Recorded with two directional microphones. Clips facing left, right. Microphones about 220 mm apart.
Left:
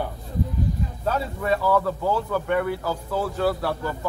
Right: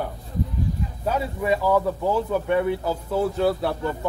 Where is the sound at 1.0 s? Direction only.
15° right (ahead or behind).